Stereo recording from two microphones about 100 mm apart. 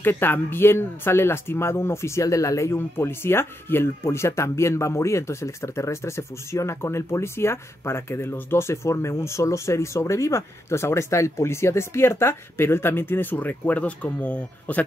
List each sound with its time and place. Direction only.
0.0 s speech: 20° left (ahead or behind)